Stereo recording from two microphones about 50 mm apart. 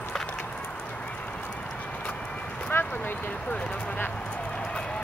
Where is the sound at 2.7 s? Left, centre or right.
Left.